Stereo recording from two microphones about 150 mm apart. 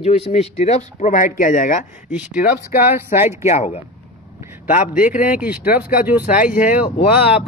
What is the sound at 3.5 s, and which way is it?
Speech, 45° left (ahead or behind).